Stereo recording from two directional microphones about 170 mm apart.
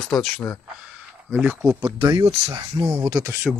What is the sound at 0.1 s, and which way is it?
Speech, centre (ahead or behind).